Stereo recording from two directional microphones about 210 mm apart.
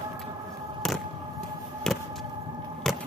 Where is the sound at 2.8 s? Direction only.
Centre (ahead or behind).